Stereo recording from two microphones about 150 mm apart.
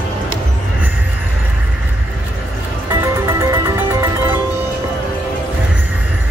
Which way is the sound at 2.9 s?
20° right (ahead or behind).